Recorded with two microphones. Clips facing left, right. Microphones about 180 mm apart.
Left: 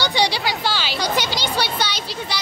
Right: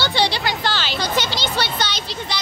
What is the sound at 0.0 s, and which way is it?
Music, 15° left (ahead or behind).